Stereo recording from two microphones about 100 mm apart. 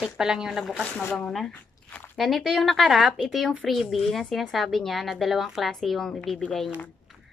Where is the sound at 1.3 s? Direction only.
10° left (ahead or behind).